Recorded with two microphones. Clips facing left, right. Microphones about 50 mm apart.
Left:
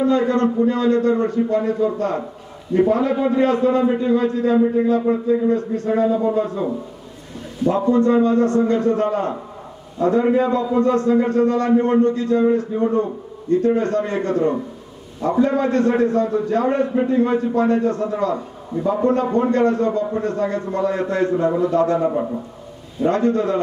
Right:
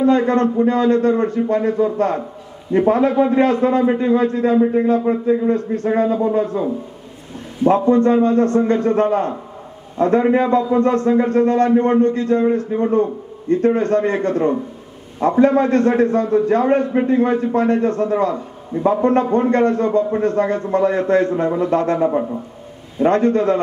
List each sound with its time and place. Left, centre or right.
0.0 s a man's voice: right
7.6 s a man's voice: right